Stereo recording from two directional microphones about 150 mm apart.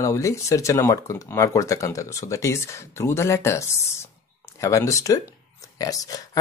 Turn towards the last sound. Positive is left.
turn(degrees=25)  # may be behind; listen again after turning